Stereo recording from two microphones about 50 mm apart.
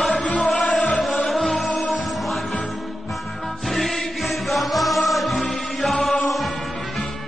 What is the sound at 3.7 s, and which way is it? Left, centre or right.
Music, centre.